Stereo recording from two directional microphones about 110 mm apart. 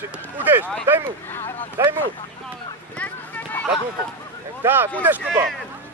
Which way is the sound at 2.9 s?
15° left (ahead or behind).